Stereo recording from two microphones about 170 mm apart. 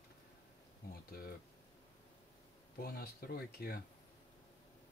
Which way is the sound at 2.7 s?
65° left (ahead or behind).